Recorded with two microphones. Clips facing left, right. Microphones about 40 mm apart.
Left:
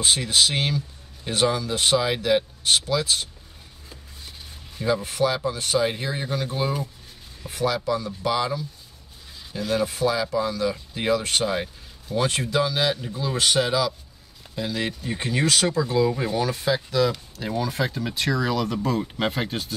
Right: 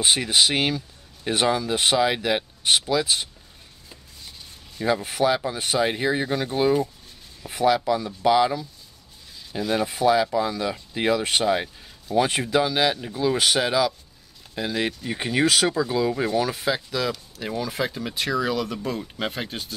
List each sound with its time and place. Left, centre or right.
0.0 s speech: centre
5.0 s speech: centre
13.6 s speech: centre
18.9 s speech: centre